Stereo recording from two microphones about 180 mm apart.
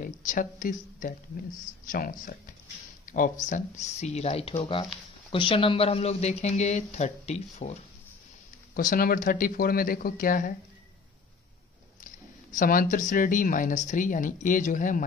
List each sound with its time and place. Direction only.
0.0 s speech: 50° left (ahead or behind)
8.7 s speech: 50° left (ahead or behind)
12.5 s speech: 45° left (ahead or behind)